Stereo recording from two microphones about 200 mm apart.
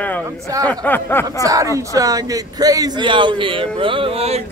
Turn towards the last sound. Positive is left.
turn(degrees=-30)  # may be behind; listen again after turning